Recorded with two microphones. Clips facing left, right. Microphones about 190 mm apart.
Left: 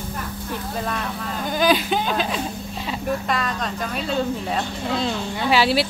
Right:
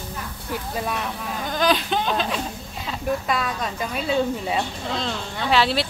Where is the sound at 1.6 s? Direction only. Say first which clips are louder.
Left 2 dB; 5° left (ahead or behind).